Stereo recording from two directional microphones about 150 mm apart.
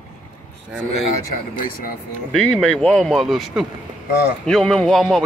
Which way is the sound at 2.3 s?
5° left (ahead or behind).